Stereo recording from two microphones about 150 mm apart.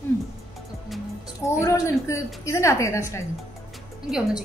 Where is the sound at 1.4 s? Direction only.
20° left (ahead or behind).